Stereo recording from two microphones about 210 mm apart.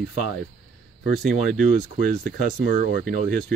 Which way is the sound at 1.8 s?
40° right (ahead or behind).